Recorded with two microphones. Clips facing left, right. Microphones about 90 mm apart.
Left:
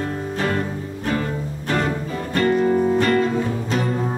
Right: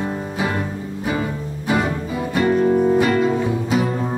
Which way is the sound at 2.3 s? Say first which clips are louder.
Right 1 dB; 10° right (ahead or behind).